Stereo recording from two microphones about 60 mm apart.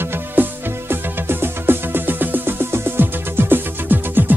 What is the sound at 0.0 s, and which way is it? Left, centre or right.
Music, right.